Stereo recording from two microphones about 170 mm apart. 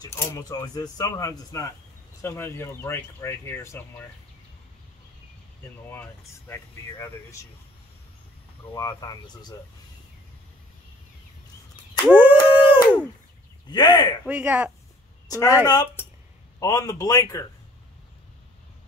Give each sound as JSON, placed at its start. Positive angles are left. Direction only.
{"t": 0.0, "sound": "speech", "side_deg": 15}
{"t": 5.9, "sound": "speech", "side_deg": 10}
{"t": 8.7, "sound": "speech", "side_deg": 20}
{"t": 12.1, "sound": "dog", "side_deg": -10}
{"t": 13.7, "sound": "speech", "side_deg": 25}
{"t": 14.2, "sound": "speech", "side_deg": -10}
{"t": 15.2, "sound": "speech", "side_deg": 20}